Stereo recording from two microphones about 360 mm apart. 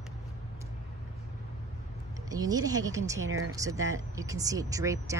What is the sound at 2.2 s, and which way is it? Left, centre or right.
Speech, centre.